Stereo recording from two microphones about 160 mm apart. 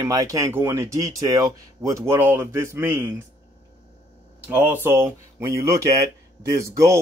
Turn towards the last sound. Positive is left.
turn(degrees=-20)  # may be behind; listen again after turning